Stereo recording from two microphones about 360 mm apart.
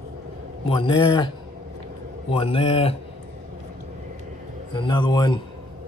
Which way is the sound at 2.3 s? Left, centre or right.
Centre.